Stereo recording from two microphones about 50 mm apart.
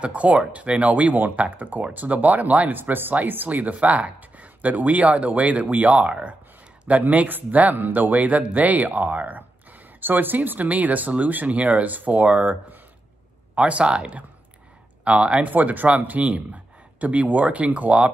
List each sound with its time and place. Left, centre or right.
0.0 s speech: right
15.5 s speech: right